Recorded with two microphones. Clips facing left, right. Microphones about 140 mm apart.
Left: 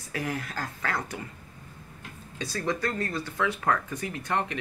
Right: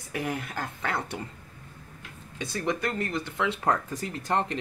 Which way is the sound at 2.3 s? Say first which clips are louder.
Right 1 dB; 20° right (ahead or behind).